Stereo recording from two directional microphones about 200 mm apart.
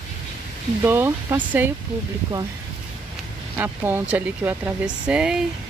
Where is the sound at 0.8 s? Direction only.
10° right (ahead or behind).